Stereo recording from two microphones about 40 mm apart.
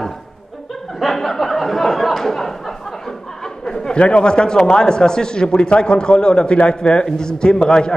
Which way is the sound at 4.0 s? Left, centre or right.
Left.